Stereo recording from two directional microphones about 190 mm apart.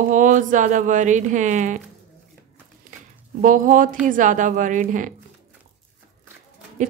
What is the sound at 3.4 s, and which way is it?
A woman's voice, 45° right (ahead or behind).